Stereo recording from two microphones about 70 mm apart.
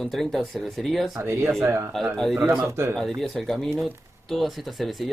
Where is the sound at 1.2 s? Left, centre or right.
Right.